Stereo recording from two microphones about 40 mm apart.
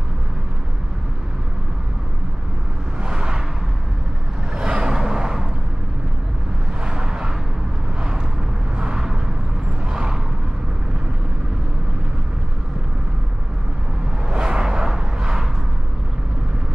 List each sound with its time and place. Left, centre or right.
3.0 s vehicle: centre
4.6 s vehicle: right
6.8 s vehicle: centre
8.7 s vehicle: centre
14.3 s a sound: centre